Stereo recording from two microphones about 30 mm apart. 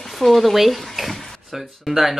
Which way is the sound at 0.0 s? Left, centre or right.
Centre.